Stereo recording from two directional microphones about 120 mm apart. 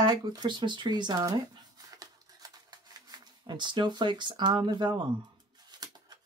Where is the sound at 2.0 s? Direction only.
30° right (ahead or behind).